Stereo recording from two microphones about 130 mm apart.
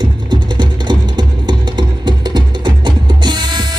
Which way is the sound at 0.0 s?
35° right (ahead or behind).